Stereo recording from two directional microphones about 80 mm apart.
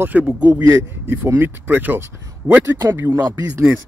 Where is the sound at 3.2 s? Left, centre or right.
Right.